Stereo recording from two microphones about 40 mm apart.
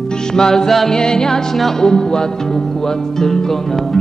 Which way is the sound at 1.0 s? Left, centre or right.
Centre.